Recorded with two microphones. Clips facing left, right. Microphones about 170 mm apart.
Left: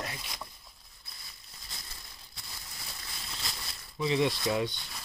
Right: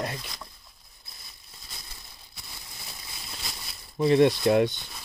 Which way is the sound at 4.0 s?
55° right (ahead or behind).